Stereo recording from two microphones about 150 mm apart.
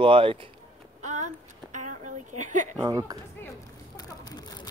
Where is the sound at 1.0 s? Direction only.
50° right (ahead or behind).